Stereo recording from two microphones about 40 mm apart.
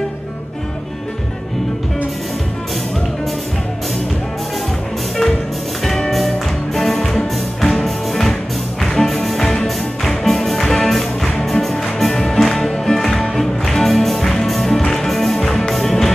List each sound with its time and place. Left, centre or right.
5.9 s music: centre